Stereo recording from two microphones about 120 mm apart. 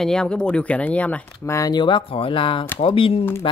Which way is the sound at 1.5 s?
30° left (ahead or behind).